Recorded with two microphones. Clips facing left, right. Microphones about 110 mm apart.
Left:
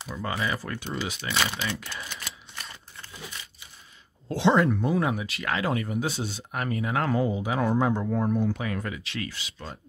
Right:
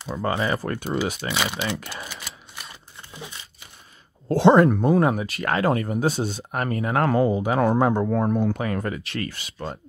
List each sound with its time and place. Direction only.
0.3 s speech: 40° right (ahead or behind)
2.0 s typewriter: 5° right (ahead or behind)
2.7 s a sound: 20° right (ahead or behind)
4.3 s speech: 45° right (ahead or behind)